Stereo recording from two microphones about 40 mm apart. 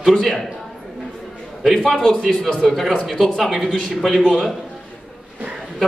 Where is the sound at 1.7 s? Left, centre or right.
Centre.